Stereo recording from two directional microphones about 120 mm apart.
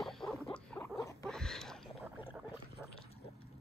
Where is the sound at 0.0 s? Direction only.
5° left (ahead or behind).